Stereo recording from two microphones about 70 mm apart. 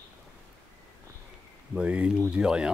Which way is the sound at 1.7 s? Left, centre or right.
Centre.